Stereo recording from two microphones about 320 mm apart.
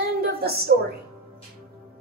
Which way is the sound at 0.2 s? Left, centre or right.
Right.